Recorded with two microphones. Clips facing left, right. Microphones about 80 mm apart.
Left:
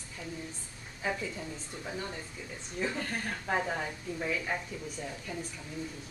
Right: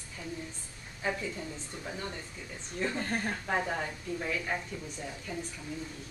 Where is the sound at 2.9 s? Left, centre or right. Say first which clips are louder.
Right 3 dB; right.